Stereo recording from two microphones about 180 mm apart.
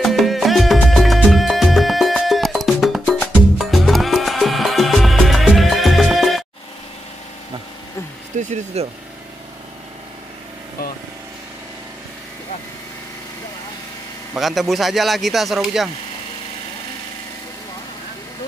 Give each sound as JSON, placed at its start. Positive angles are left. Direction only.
{"t": 0.0, "sound": "music", "side_deg": 0}
{"t": 8.4, "sound": "speech", "side_deg": -40}
{"t": 14.3, "sound": "a man's voice", "side_deg": 0}